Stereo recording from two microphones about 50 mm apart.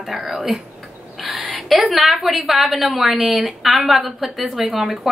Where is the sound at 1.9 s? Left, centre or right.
Centre.